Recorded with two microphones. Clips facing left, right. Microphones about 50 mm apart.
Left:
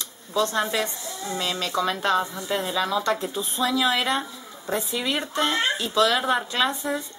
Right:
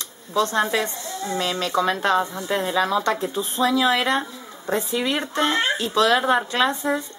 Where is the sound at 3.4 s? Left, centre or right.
Right.